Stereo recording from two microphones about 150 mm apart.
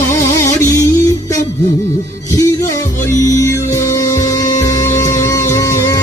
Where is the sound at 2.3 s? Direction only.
20° left (ahead or behind).